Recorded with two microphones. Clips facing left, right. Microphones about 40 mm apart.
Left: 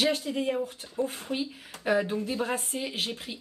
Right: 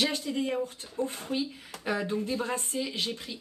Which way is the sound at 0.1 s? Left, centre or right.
Left.